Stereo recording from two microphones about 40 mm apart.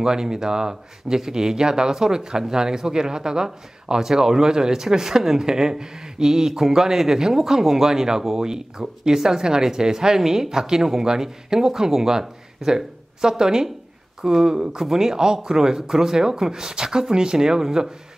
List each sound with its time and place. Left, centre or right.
0.0 s speech: centre